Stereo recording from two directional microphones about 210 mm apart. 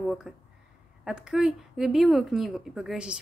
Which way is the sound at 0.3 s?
Centre (ahead or behind).